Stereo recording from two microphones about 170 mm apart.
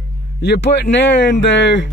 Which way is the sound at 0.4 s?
80° left.